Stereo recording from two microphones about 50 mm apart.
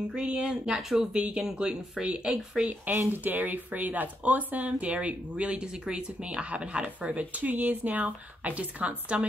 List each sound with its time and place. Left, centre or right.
0.1 s speech: centre
2.7 s speech: right